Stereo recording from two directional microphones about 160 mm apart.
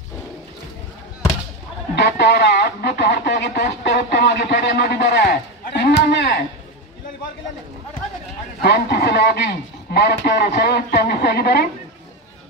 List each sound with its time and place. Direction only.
2.0 s speech: 90° left
8.6 s speech: 90° left